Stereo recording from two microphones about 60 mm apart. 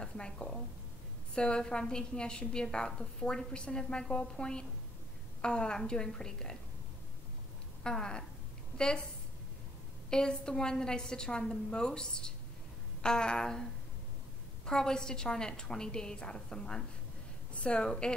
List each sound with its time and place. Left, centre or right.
0.0 s a woman's voice: centre
7.8 s a woman's voice: centre
10.0 s a woman's voice: centre
14.7 s a woman's voice: centre